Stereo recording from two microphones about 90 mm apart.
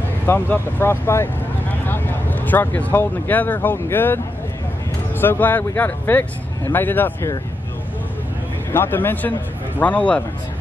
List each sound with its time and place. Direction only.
0.3 s speech: 25° left (ahead or behind)
5.2 s speech: 20° left (ahead or behind)
8.7 s speech: 25° left (ahead or behind)